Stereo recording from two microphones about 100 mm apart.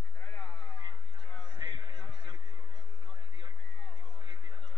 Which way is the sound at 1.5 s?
55° right (ahead or behind).